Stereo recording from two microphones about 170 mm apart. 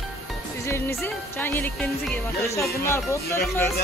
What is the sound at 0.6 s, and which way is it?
Speech, 15° left (ahead or behind).